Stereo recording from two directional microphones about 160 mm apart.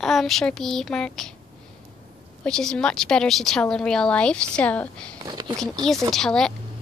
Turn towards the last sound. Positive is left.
turn(degrees=5)  # may be behind; listen again after turning